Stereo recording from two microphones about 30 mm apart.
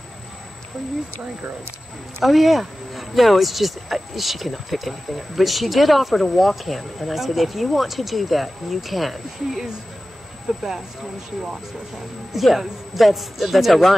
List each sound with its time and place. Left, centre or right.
2.2 s speech: centre
10.5 s speech: centre
12.3 s speech: centre